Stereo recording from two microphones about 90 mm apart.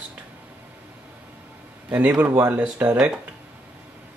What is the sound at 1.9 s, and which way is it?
Speech, 15° right (ahead or behind).